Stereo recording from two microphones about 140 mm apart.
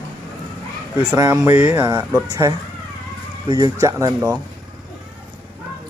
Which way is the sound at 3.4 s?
30° right (ahead or behind).